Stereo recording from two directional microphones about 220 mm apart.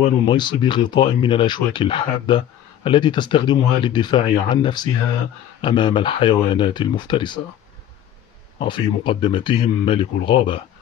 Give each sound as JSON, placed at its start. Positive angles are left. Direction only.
{"t": 0.0, "sound": "speech", "side_deg": 20}
{"t": 8.5, "sound": "speech", "side_deg": 20}